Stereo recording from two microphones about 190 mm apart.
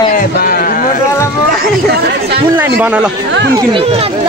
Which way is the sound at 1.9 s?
55° right (ahead or behind).